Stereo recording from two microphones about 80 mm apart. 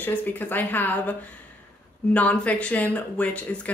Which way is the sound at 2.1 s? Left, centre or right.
Centre.